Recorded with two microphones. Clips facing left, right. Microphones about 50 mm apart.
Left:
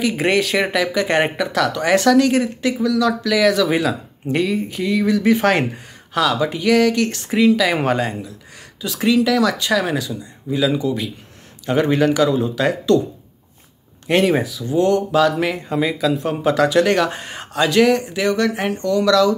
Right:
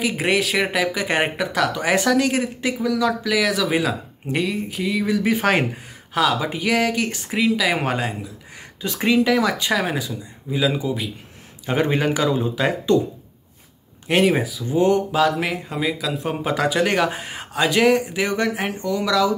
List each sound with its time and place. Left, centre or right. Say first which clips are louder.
0.0 s speech: left 3 dB; centre
8.8 s speech: left 2 dB; right
14.0 s speech: left 2 dB; centre
14.7 s speech: left 1 dB; centre
15.0 s speech: left 3 dB; centre
18.5 s speech: left 4 dB; centre